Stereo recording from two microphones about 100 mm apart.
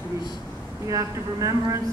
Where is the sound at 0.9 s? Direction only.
35° right (ahead or behind).